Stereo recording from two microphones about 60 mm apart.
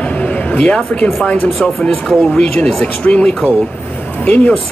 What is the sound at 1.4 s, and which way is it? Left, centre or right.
Speech, centre.